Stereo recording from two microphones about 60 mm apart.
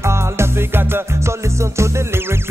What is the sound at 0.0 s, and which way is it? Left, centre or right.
Music, right.